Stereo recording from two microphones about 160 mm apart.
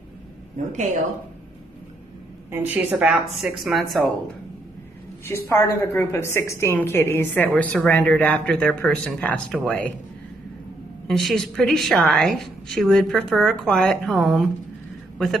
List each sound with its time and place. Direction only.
0.6 s speech: 50° right (ahead or behind)
2.5 s a woman's voice: 10° right (ahead or behind)
5.2 s a woman's voice: 15° left (ahead or behind)
11.1 s a woman's voice: centre (ahead or behind)